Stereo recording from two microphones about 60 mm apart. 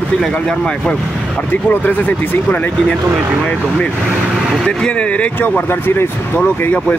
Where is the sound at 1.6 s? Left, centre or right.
Left.